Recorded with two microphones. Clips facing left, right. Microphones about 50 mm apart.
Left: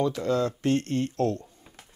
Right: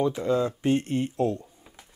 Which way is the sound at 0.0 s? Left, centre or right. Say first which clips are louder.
Right 1 dB; centre.